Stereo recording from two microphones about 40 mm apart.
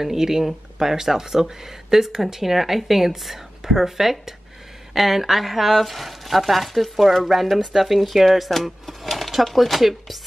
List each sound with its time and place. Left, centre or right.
0.0 s speech: centre